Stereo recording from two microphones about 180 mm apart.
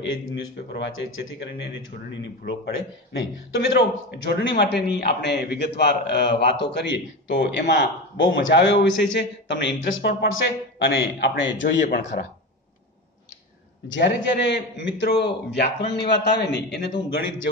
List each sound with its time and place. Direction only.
0.0 s a man's voice: 85° left
2.4 s a man's voice: 80° left
13.8 s a man's voice: 80° left